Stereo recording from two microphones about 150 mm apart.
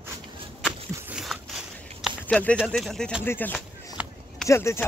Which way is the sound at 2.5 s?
Centre (ahead or behind).